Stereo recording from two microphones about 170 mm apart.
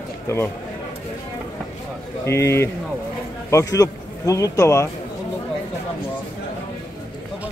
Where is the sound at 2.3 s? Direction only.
15° left (ahead or behind).